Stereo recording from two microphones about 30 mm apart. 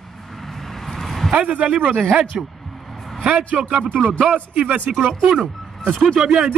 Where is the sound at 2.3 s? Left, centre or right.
Centre.